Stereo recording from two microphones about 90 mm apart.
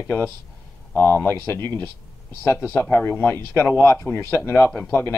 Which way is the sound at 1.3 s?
35° left (ahead or behind).